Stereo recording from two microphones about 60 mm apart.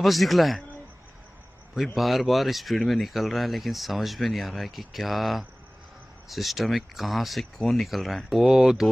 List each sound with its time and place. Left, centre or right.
0.0 s speech: centre
2.0 s speech: centre